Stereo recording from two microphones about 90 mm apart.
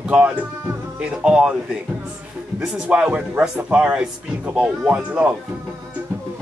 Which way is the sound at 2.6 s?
10° right (ahead or behind).